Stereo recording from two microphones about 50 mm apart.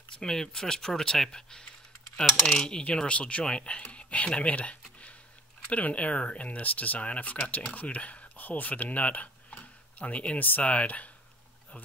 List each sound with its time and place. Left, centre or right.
0.1 s speech: centre
2.2 s typing: centre
2.6 s speech: centre